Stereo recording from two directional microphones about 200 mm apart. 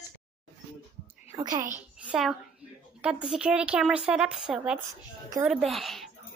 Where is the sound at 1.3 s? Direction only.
15° right (ahead or behind).